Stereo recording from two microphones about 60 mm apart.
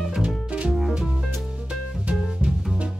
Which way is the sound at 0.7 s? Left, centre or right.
Centre.